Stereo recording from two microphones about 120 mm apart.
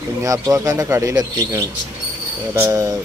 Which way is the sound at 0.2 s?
30° right (ahead or behind).